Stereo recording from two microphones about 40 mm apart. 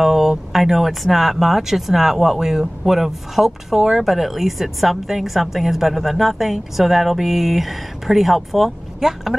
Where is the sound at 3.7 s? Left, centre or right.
Centre.